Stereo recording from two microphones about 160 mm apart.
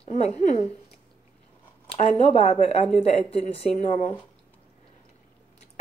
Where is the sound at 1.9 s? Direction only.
45° left (ahead or behind).